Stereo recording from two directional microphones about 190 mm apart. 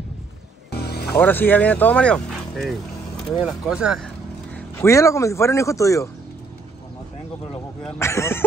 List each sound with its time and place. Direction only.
0.7 s music: 60° left (ahead or behind)
1.1 s speech: 10° left (ahead or behind)
4.7 s speech: 15° left (ahead or behind)
7.8 s speech: 15° left (ahead or behind)